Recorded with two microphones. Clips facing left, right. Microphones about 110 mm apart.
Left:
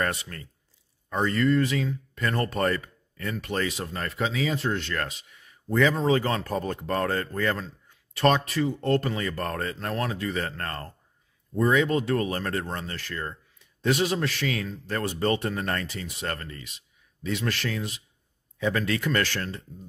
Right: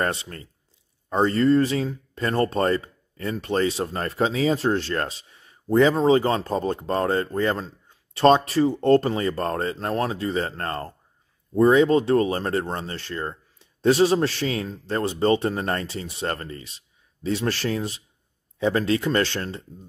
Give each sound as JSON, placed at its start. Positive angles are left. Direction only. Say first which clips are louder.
{"t": 0.0, "sound": "speech", "louder": "right 3 dB", "side_deg": -30}